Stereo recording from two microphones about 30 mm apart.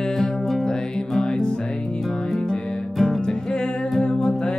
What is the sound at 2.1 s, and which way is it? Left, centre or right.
Music, centre.